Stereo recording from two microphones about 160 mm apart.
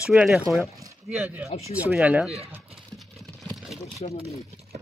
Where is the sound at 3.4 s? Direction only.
Centre (ahead or behind).